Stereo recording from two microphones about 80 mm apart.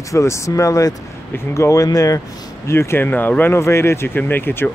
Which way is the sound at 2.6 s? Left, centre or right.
Left.